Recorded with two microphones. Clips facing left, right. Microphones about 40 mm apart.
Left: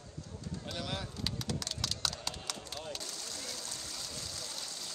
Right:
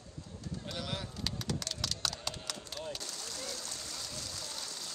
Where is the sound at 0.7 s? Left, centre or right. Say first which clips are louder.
Even; centre.